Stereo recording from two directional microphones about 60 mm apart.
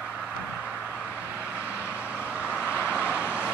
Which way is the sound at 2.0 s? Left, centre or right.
Right.